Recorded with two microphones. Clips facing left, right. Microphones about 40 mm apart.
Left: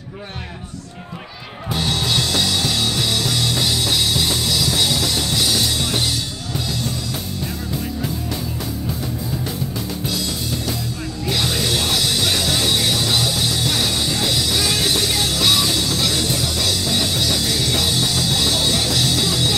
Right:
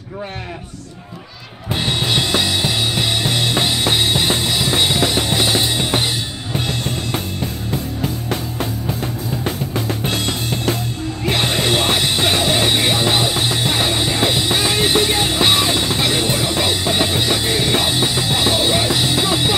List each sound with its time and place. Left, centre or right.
1.7 s music: right
6.5 s drum kit: right
7.7 s music: right